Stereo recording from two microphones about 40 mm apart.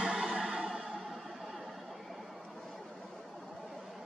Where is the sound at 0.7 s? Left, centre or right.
Centre.